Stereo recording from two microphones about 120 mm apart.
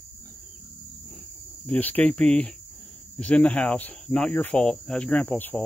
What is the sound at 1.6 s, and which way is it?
Speech, 15° left (ahead or behind).